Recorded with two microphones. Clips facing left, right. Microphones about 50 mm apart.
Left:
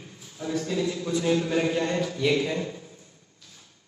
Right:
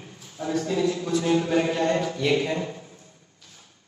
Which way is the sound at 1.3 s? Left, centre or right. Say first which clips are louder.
Right 1 dB; centre.